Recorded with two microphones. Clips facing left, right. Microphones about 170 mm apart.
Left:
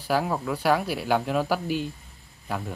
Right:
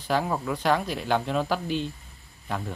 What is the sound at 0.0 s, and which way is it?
Speech, 5° left (ahead or behind).